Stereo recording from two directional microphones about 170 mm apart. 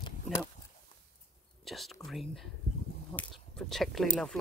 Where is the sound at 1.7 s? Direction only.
Centre (ahead or behind).